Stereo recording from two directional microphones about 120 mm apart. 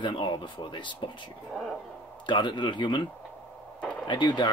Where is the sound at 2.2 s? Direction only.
40° left (ahead or behind).